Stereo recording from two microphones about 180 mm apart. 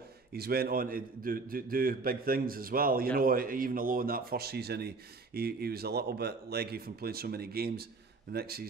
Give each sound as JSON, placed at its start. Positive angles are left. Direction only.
{"t": 0.3, "sound": "a man's voice", "side_deg": -60}